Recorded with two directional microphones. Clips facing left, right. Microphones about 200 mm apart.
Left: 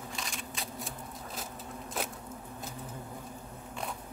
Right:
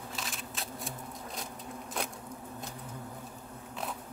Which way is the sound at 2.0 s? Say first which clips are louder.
Even; 5° left (ahead or behind).